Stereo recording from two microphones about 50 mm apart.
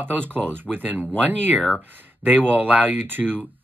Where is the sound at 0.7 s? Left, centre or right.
Right.